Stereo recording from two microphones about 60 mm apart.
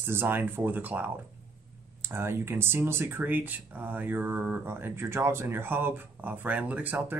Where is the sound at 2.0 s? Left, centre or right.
Right.